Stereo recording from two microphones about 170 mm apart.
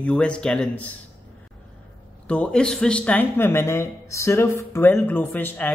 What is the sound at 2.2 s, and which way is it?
Speech, 5° left (ahead or behind).